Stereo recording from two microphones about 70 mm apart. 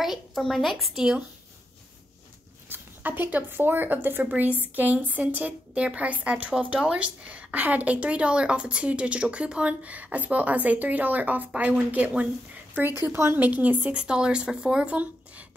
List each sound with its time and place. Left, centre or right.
0.0 s a woman's voice: centre
2.7 s a woman's voice: right
13.0 s speech: right
13.4 s speech: right